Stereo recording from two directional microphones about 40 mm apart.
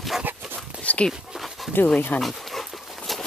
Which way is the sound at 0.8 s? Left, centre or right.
Left.